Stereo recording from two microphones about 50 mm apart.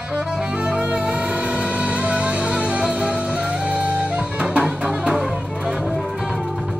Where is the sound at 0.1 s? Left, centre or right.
Centre.